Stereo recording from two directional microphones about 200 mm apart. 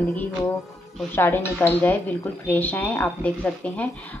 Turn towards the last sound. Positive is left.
turn(degrees=5)  # may be behind; listen again after turning